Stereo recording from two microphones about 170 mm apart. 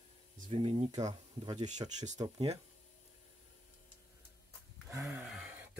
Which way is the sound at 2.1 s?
35° right (ahead or behind).